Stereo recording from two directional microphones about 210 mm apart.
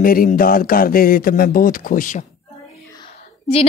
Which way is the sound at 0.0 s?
40° left (ahead or behind).